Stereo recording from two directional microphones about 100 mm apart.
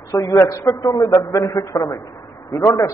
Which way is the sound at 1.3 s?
30° left (ahead or behind).